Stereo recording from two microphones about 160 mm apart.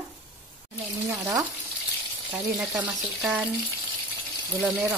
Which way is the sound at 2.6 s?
5° right (ahead or behind).